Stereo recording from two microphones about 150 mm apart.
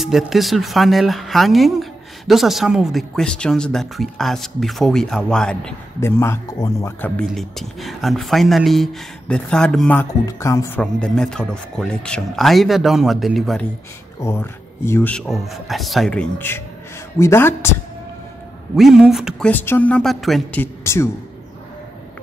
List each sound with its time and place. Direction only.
0.0 s speech: centre (ahead or behind)
5.9 s speech: 15° left (ahead or behind)
7.2 s speech: centre (ahead or behind)
10.2 s speech: 20° left (ahead or behind)
10.8 s speech: 5° left (ahead or behind)
14.2 s speech: 15° left (ahead or behind)
18.8 s speech: centre (ahead or behind)
19.5 s speech: 15° left (ahead or behind)
20.6 s a woman's voice: 20° left (ahead or behind)